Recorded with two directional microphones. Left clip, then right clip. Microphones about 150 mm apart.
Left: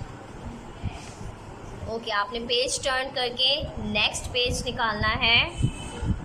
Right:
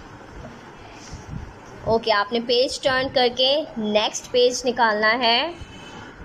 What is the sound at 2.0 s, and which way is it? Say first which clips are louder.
Speech: right 3 dB; 40° right (ahead or behind).